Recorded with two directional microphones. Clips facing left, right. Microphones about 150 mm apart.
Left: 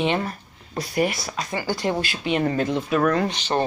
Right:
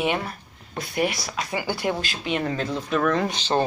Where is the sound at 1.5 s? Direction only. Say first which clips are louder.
Left 1 dB; 10° right (ahead or behind).